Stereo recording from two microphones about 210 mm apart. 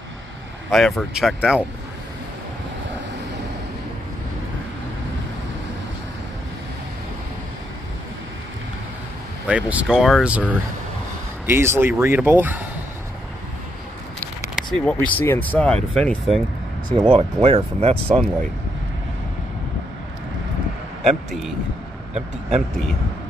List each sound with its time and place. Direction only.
0.7 s speech: centre (ahead or behind)
9.5 s speech: 5° right (ahead or behind)
14.2 s speech: 5° left (ahead or behind)
17.1 s speech: 25° right (ahead or behind)
21.0 s a man's voice: centre (ahead or behind)